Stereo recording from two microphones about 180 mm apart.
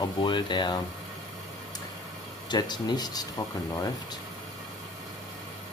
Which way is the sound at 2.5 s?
25° left (ahead or behind).